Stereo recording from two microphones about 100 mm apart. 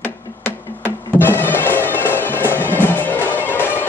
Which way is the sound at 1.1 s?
20° left (ahead or behind).